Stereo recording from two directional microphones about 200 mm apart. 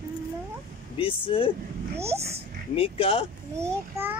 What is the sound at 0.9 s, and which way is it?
Speech, 25° left (ahead or behind).